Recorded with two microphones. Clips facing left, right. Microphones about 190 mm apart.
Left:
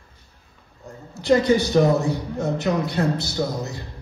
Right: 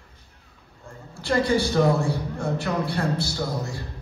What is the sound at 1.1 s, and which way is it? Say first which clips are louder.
A man's voice: left 5 dB; 20° left (ahead or behind).